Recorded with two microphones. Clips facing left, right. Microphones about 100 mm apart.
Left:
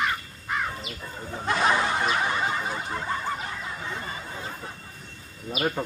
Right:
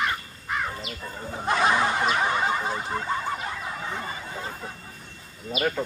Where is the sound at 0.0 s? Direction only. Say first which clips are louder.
Even; centre (ahead or behind).